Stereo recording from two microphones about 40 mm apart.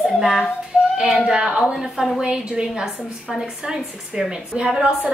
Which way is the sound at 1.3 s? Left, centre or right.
Right.